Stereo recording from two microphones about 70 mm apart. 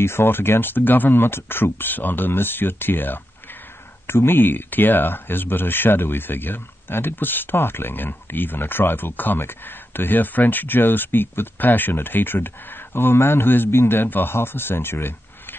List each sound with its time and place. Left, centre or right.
0.0 s speech: left